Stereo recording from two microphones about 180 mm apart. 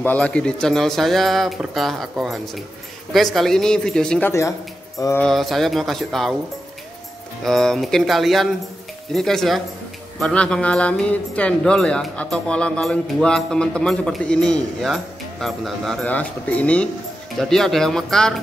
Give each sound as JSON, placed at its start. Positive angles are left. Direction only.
{"t": 0.0, "sound": "speech", "side_deg": 5}
{"t": 4.3, "sound": "speech", "side_deg": 15}
{"t": 5.2, "sound": "speech", "side_deg": 0}
{"t": 7.4, "sound": "speech", "side_deg": 0}